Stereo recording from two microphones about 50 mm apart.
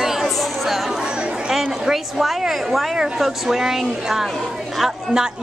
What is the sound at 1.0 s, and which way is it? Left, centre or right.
Chatter, centre.